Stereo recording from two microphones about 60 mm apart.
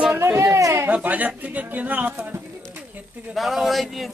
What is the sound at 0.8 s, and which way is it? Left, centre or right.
Speech, right.